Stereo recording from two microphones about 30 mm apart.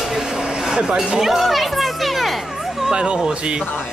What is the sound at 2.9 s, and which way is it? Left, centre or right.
Speech, right.